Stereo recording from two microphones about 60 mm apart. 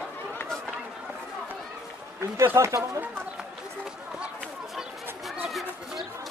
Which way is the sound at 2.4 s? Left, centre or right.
Right.